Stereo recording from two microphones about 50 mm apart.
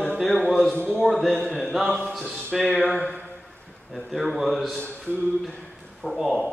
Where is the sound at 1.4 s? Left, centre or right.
Centre.